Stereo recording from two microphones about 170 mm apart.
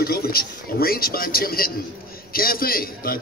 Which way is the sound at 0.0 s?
65° left (ahead or behind).